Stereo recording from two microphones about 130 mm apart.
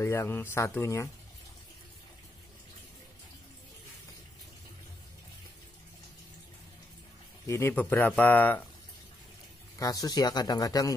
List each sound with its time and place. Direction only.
0.0 s a man's voice: 20° left (ahead or behind)
7.4 s a man's voice: 20° left (ahead or behind)
9.8 s a man's voice: 30° left (ahead or behind)